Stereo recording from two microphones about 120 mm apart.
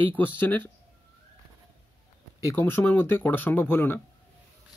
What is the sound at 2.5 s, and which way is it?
Speech, 15° left (ahead or behind).